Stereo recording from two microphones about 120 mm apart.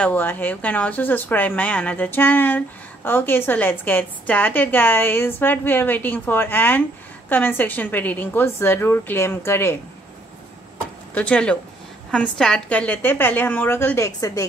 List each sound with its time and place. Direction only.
0.0 s speech: 15° left (ahead or behind)
11.1 s speech: 10° left (ahead or behind); by 14.4 s 25° left (ahead or behind)